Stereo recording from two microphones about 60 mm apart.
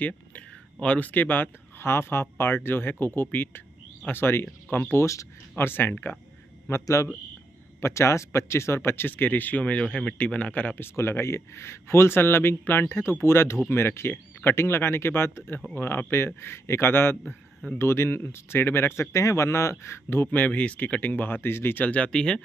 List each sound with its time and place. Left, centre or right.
0.0 s speech: left
4.6 s speech: left
4.9 s speech: left
5.6 s speech: left
6.7 s speech: left
10.8 s speech: left
20.2 s speech: left
22.1 s speech: centre